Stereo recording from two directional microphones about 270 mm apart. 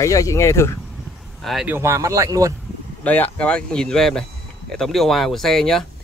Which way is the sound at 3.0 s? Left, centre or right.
Centre.